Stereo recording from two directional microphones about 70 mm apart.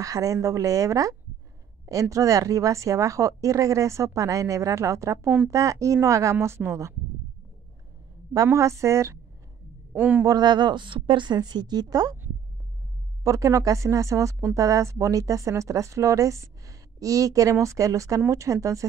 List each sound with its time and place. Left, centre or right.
0.0 s a woman's voice: right
8.5 s speech: right
9.9 s speech: right
10.2 s a woman's voice: right
13.2 s speech: right